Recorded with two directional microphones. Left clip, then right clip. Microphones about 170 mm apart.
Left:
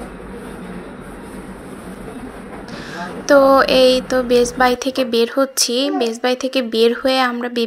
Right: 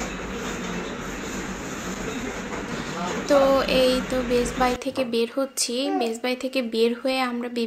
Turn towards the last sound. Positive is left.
turn(degrees=30)  # may be behind; listen again after turning